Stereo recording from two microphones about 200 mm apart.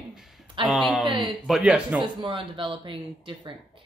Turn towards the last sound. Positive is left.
turn(degrees=-25)  # may be behind; listen again after turning